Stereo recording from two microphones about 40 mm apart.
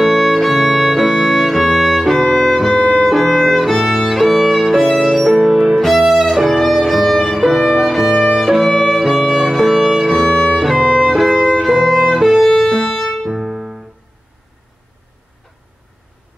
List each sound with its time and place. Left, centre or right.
0.0 s violin: centre
2.3 s music: centre
2.8 s violin: centre
5.4 s music: centre
5.8 s music: centre
7.3 s violin: centre
10.5 s music: centre
10.8 s violin: centre
11.1 s violin: centre
11.8 s music: centre
13.4 s music: centre